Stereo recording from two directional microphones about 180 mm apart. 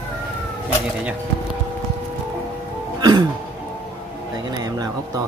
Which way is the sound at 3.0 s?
25° right (ahead or behind).